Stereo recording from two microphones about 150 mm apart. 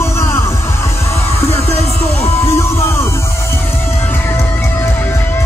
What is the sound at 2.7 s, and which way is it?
Music, 15° left (ahead or behind).